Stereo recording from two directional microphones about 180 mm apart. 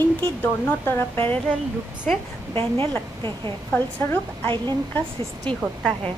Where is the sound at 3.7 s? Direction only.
10° left (ahead or behind).